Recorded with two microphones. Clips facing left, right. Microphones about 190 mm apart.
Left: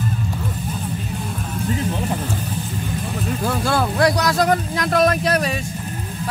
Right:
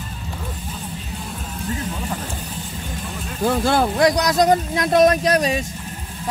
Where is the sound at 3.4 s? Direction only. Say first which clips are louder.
Right 4 dB; 20° right (ahead or behind).